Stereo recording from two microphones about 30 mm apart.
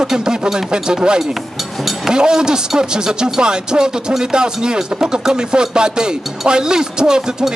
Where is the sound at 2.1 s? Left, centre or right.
Right.